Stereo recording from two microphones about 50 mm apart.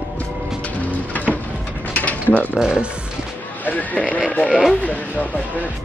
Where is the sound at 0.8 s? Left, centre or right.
Left.